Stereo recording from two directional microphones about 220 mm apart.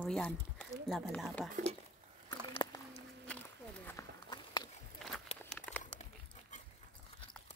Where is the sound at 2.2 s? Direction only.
20° left (ahead or behind).